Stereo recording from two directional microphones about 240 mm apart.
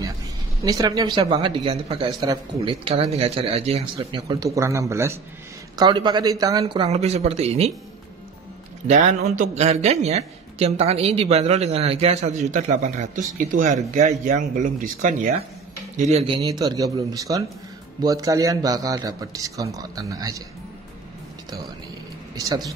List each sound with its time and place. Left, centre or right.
0.6 s a man's voice: centre
8.8 s a man's voice: right
16.4 s a man's voice: centre
22.3 s a man's voice: centre